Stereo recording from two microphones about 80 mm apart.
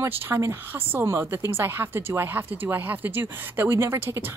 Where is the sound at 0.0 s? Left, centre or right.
Right.